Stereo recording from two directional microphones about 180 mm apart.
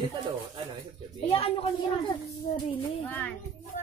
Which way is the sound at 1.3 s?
30° left (ahead or behind).